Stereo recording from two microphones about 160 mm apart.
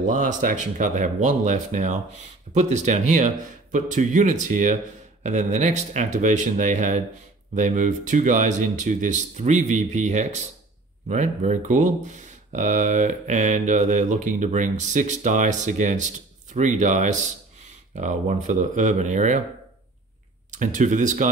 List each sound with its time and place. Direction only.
0.0 s speech: 50° right (ahead or behind)
20.5 s speech: 50° right (ahead or behind)